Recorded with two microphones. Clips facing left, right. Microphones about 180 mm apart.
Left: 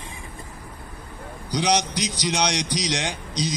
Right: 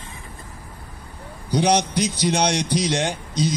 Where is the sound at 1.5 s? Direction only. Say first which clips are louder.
Right 4 dB; 55° right (ahead or behind).